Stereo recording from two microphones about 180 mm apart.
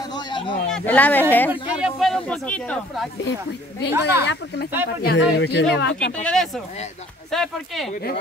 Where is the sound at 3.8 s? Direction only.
70° left (ahead or behind).